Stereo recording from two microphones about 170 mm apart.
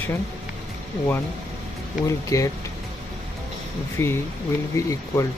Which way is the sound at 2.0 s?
20° left (ahead or behind).